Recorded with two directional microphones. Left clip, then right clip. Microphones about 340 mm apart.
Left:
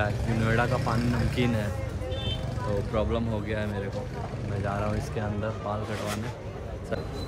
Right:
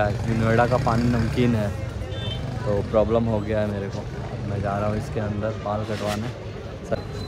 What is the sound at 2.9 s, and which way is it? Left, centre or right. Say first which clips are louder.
Speech: right 11 dB; centre.